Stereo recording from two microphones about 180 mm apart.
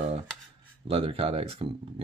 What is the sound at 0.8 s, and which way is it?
Speech, 30° right (ahead or behind).